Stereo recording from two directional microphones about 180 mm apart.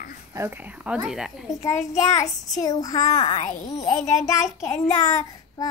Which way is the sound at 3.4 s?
45° left (ahead or behind).